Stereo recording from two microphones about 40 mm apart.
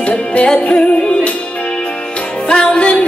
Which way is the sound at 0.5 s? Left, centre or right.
Left.